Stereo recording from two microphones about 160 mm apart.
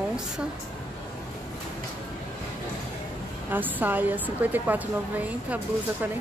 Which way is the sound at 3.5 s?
10° right (ahead or behind).